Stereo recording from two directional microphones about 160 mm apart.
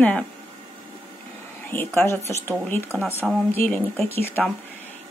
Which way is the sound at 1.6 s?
15° left (ahead or behind).